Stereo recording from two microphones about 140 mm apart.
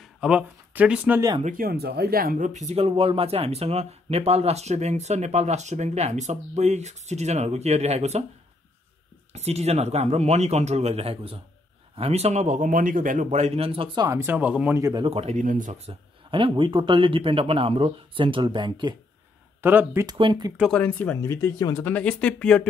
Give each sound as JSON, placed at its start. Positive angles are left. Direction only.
{"t": 0.0, "sound": "speech", "side_deg": -5}
{"t": 1.4, "sound": "speech", "side_deg": -85}
{"t": 9.3, "sound": "speech", "side_deg": -50}
{"t": 14.0, "sound": "speech", "side_deg": -20}
{"t": 14.8, "sound": "speech", "side_deg": -25}
{"t": 15.0, "sound": "speech", "side_deg": -50}
{"t": 15.4, "sound": "speech", "side_deg": -65}
{"t": 19.6, "sound": "speech", "side_deg": -15}
{"t": 20.1, "sound": "speech", "side_deg": -35}
{"t": 20.7, "sound": "speech", "side_deg": 10}
{"t": 21.8, "sound": "speech", "side_deg": 10}